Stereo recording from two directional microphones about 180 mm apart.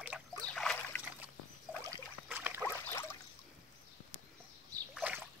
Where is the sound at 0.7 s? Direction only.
10° left (ahead or behind).